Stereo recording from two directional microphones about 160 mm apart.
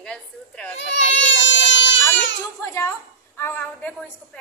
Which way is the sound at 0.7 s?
90° left.